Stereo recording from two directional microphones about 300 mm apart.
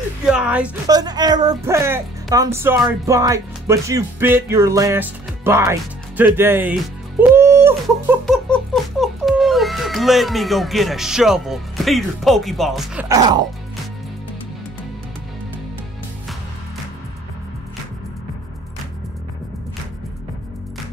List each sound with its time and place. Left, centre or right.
0.3 s speech: centre
9.0 s speech: centre
13.1 s speech: centre